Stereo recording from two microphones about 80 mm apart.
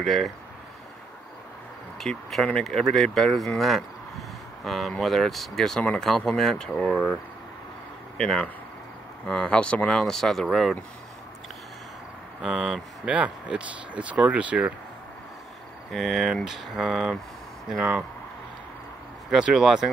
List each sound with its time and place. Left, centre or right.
0.0 s speech: centre
2.0 s speech: centre
6.8 s speech: centre
8.2 s speech: centre
12.4 s speech: centre
15.9 s speech: centre
19.3 s speech: centre